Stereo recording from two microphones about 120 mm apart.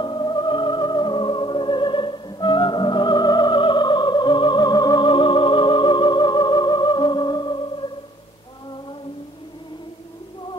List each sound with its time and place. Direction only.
0.0 s music: 40° left (ahead or behind)